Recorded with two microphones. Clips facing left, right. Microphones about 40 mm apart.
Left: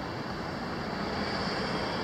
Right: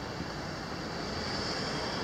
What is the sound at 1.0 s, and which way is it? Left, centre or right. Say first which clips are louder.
Vehicle: left 4 dB; centre.